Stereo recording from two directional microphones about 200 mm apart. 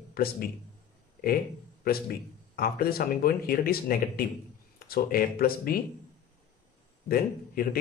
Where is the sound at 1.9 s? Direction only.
50° left (ahead or behind).